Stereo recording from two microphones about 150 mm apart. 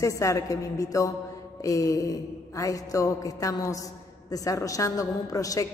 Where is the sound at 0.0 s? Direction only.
20° left (ahead or behind).